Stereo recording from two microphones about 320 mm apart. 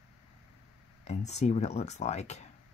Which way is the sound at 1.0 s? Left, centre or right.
Left.